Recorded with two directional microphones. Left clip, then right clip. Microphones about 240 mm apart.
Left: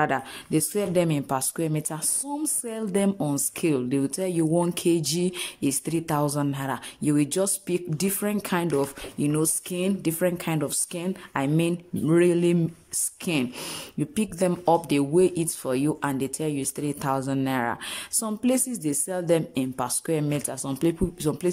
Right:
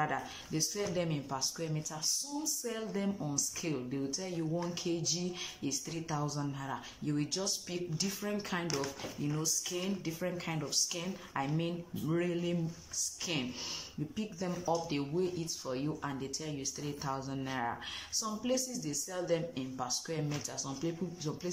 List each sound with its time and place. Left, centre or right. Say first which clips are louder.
0.0 s speech: left 10 dB; left